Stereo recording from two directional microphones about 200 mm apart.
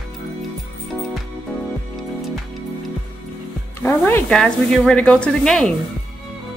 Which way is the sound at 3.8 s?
10° left (ahead or behind).